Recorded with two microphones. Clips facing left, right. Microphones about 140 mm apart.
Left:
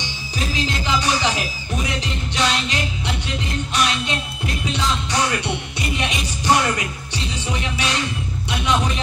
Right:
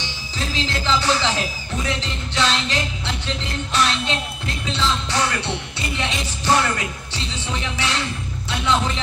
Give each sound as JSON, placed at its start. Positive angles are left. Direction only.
{"t": 0.4, "sound": "music", "side_deg": 15}
{"t": 8.5, "sound": "speech", "side_deg": 15}